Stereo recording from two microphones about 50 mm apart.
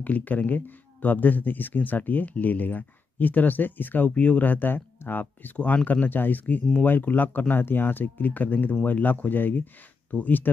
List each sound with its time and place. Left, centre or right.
0.0 s speech: left